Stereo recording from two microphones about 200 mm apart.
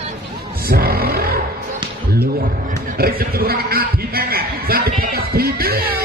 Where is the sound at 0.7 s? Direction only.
50° right (ahead or behind).